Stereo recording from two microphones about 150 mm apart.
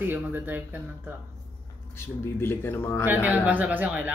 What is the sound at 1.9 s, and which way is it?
Speech, 15° left (ahead or behind).